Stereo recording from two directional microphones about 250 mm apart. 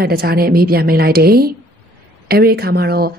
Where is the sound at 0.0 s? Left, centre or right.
Right.